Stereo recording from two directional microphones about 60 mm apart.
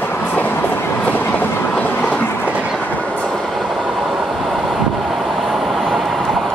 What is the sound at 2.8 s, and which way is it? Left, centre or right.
Train, left.